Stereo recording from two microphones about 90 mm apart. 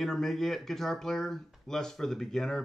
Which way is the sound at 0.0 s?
5° left (ahead or behind).